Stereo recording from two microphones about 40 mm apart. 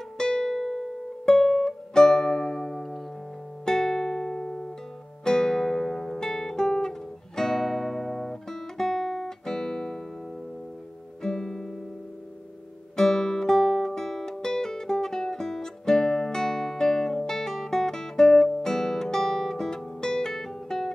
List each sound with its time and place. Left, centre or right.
0.2 s music: centre
11.2 s guitar: centre
12.9 s music: centre